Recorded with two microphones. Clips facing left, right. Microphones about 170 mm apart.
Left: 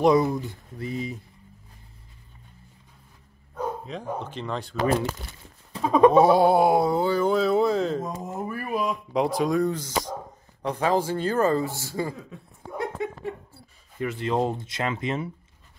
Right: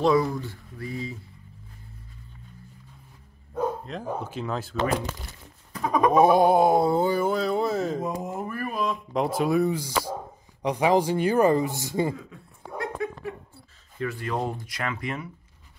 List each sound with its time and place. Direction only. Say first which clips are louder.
0.0 s speech: left 2 dB; 20° left (ahead or behind)
3.8 s speech: even; 5° right (ahead or behind)
5.7 s speech: left 5 dB; 25° left (ahead or behind)
6.1 s a sound: left 1 dB; 15° right (ahead or behind)
7.1 s speech: left 1 dB; 10° right (ahead or behind)
7.3 s speech: left 4 dB; centre (ahead or behind)
8.2 s a sound: right 1 dB; centre (ahead or behind)
8.5 s speech: left 3 dB; 10° left (ahead or behind); by 12.2 s 20° right (ahead or behind)
13.9 s speech: left 4 dB; 20° left (ahead or behind)